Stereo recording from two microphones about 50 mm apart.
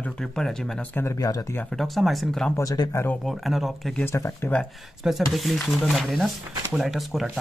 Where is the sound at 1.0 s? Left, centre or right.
Left.